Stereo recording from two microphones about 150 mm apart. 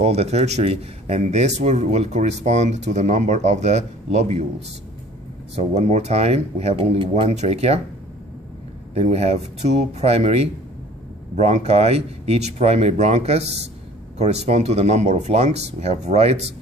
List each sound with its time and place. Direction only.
0.0 s speech: 45° right (ahead or behind)
5.6 s speech: 50° right (ahead or behind)
8.9 s speech: 45° right (ahead or behind)